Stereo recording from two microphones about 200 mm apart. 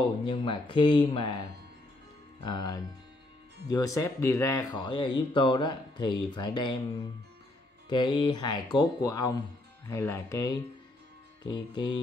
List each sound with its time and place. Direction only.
0.2 s speech: 25° left (ahead or behind)
2.4 s speech: 20° left (ahead or behind)
7.9 s speech: 25° left (ahead or behind)